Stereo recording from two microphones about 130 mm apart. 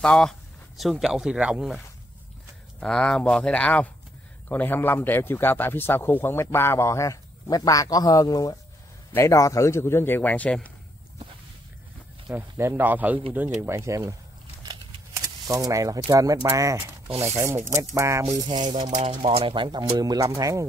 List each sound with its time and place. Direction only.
0.0 s speech: 5° left (ahead or behind)
2.8 s a man's voice: 5° left (ahead or behind)
12.4 s speech: 20° right (ahead or behind)
15.4 s speech: 25° right (ahead or behind)
18.3 s speech: 35° right (ahead or behind)
19.0 s speech: 50° right (ahead or behind); by 20.6 s 25° right (ahead or behind)